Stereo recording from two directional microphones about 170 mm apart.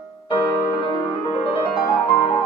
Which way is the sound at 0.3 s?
30° left (ahead or behind).